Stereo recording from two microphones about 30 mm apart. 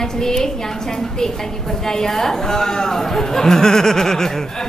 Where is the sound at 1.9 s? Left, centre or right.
Centre.